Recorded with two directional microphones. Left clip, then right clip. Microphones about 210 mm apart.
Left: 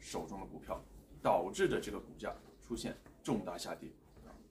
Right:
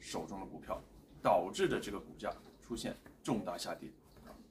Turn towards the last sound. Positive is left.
turn(degrees=-5)  # may be behind; listen again after turning